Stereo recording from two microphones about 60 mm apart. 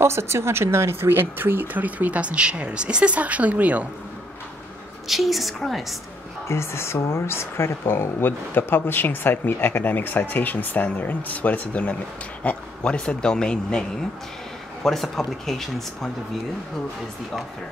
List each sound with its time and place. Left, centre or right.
0.0 s speech: right
5.0 s speech: centre
6.5 s speech: left; by 16.1 s centre